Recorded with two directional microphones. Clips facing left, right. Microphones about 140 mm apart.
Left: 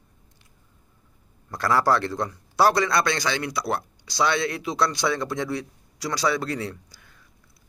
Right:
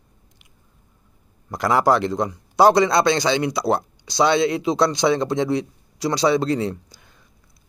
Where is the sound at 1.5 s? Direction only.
15° right (ahead or behind).